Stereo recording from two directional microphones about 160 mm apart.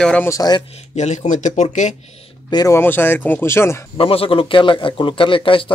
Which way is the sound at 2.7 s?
15° left (ahead or behind).